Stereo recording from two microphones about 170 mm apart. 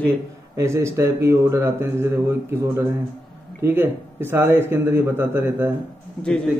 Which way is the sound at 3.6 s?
15° right (ahead or behind).